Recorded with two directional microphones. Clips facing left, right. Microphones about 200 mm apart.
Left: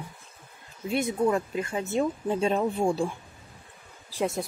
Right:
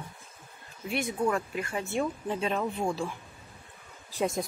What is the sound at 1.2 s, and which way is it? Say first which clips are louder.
Speech: left 3 dB; 25° left (ahead or behind).